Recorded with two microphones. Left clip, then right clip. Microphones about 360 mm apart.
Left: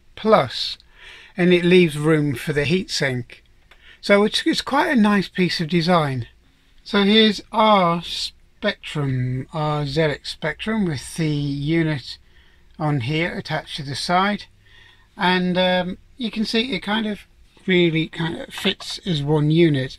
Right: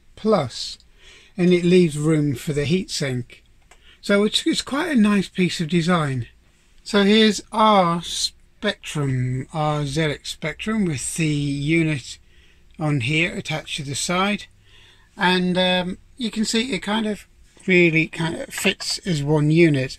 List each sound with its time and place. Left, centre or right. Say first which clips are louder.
0.3 s speech: left 4 dB; left
6.8 s speech: even; centre
11.4 s speech: right 1 dB; centre
11.7 s speech: right 1 dB; centre